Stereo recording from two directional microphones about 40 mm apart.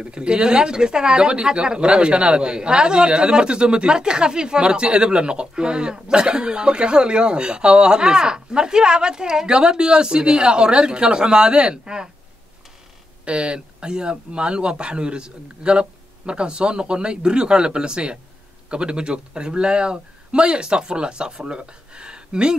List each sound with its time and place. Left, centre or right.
0.0 s speech: right
13.2 s speech: right